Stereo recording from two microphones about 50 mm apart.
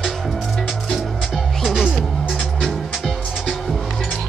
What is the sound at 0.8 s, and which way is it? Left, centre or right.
Music, centre.